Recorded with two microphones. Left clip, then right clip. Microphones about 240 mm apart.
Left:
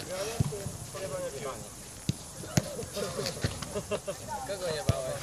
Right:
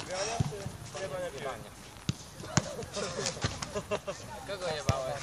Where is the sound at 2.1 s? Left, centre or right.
Right.